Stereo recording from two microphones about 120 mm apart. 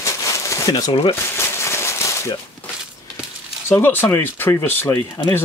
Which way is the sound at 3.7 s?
20° left (ahead or behind).